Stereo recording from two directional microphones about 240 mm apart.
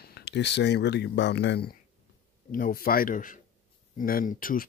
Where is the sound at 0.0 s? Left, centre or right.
Left.